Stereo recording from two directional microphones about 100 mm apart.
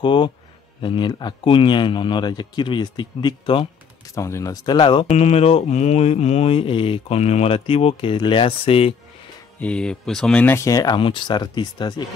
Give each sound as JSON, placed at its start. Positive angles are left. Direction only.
{"t": 0.0, "sound": "a man's voice", "side_deg": 55}
{"t": 4.0, "sound": "speech", "side_deg": 30}
{"t": 5.1, "sound": "mantra", "side_deg": 85}
{"t": 9.6, "sound": "speech", "side_deg": 10}
{"t": 10.4, "sound": "speech", "side_deg": 25}
{"t": 10.7, "sound": "speech", "side_deg": 40}
{"t": 11.0, "sound": "speech", "side_deg": 60}